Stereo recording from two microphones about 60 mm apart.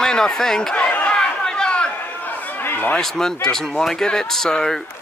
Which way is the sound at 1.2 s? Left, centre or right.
Centre.